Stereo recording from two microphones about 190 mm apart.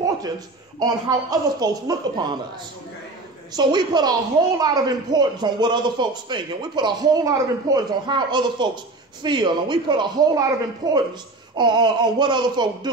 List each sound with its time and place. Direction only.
0.7 s a man's voice: 20° right (ahead or behind)
3.5 s a man's voice: 25° right (ahead or behind)